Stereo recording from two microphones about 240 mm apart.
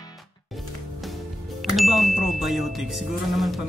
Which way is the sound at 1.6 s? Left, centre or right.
Centre.